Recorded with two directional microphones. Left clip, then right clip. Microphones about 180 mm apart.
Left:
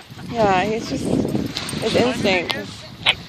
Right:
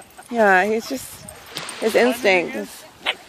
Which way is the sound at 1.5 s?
55° left (ahead or behind).